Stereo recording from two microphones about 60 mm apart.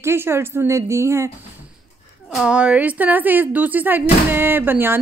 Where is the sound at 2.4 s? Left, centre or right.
Centre; by 4.9 s right.